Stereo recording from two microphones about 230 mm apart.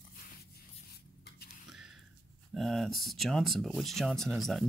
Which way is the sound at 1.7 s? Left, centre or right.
Centre.